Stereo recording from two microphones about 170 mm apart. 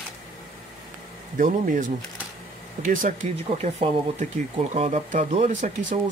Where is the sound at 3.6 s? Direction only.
40° right (ahead or behind).